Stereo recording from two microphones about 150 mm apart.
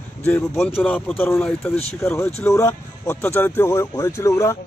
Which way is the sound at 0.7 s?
10° left (ahead or behind).